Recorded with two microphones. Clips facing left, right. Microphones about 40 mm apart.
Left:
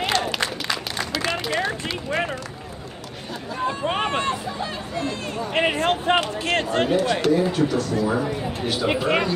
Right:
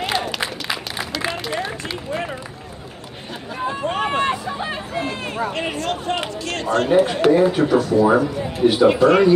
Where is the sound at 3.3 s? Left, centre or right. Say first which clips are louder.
Right 1 dB; centre.